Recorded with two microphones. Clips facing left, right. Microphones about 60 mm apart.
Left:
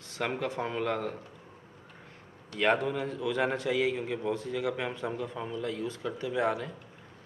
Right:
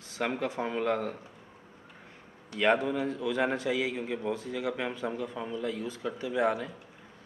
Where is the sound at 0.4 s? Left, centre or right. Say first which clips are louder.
Right 1 dB; centre.